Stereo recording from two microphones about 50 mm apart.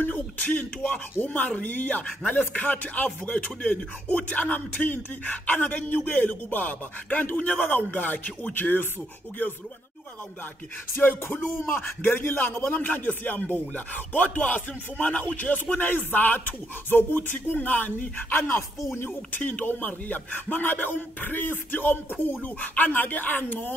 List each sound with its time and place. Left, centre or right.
0.0 s speech: left
11.0 s music: left
11.6 s speech: left